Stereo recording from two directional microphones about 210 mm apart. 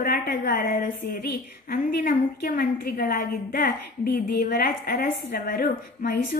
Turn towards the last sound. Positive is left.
turn(degrees=45)  # may be behind; listen again after turning